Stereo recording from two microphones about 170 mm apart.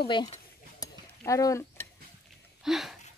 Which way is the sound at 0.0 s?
25° left (ahead or behind).